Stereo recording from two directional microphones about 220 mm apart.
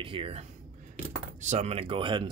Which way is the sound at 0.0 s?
25° right (ahead or behind).